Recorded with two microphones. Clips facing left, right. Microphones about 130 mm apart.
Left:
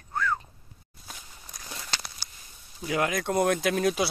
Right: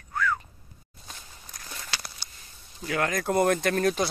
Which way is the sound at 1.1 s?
5° left (ahead or behind).